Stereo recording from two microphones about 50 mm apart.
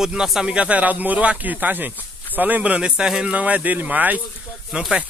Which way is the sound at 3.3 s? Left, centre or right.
Right.